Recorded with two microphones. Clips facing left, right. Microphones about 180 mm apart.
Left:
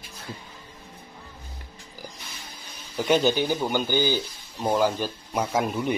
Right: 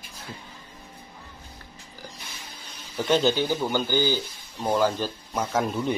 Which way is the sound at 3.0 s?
10° left (ahead or behind).